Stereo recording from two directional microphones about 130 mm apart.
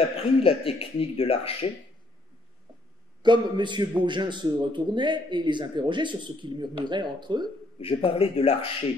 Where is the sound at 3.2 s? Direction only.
35° right (ahead or behind).